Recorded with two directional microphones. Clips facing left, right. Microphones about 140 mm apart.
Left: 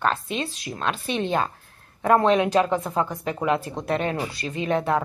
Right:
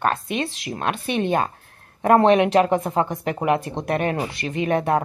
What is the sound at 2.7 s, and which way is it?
Speech, 25° right (ahead or behind).